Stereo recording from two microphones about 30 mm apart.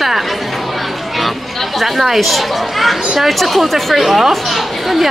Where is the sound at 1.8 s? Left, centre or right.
Centre.